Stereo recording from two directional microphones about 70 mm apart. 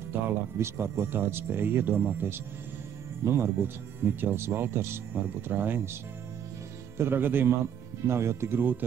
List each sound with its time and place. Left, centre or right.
0.6 s speech: right
7.0 s speech: right